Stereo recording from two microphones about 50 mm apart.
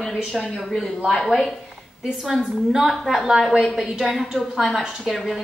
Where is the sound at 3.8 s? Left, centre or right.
Centre.